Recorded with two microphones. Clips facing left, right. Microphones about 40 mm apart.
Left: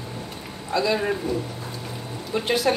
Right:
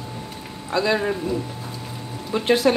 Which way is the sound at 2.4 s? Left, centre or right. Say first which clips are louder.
Right 5 dB; right.